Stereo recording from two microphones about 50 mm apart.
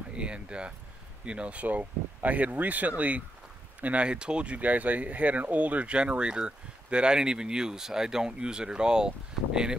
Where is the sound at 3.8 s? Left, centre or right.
Right.